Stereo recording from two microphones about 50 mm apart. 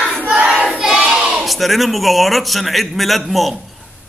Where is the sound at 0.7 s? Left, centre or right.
Centre.